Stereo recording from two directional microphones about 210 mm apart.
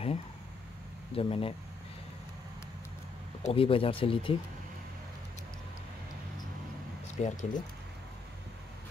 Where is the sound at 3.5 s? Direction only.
25° left (ahead or behind).